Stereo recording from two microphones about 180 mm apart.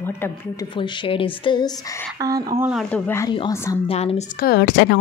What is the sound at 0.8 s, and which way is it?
Speech, 30° left (ahead or behind).